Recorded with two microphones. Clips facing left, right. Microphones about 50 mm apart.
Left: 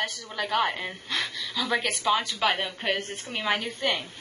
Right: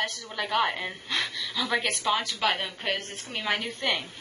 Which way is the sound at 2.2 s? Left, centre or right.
Centre.